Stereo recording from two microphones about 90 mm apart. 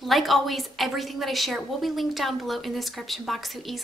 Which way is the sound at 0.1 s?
Centre (ahead or behind).